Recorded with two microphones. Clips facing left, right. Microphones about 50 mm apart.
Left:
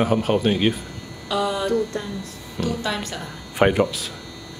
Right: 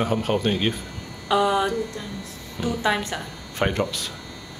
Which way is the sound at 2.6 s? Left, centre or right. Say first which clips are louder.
Right 2 dB; centre.